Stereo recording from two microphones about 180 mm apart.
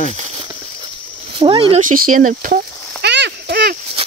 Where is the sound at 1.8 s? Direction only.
50° right (ahead or behind).